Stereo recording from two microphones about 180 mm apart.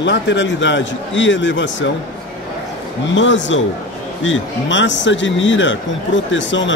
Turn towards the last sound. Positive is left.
turn(degrees=90)